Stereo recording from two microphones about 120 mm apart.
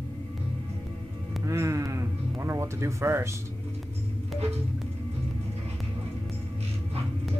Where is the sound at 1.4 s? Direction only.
25° right (ahead or behind).